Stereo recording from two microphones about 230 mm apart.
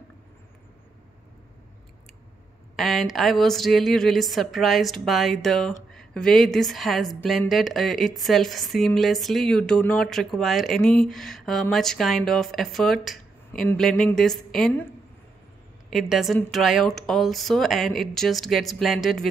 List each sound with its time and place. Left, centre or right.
2.7 s a woman's voice: centre
15.9 s a woman's voice: centre